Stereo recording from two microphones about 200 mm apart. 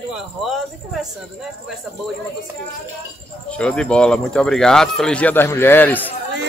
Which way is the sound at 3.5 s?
5° left (ahead or behind).